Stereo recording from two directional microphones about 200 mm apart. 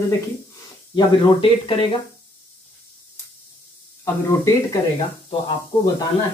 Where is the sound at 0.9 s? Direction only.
25° left (ahead or behind).